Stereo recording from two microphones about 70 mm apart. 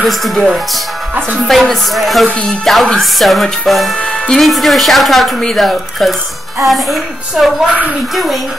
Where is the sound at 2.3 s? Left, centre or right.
Centre.